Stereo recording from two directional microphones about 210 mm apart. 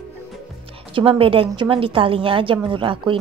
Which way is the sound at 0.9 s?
25° right (ahead or behind).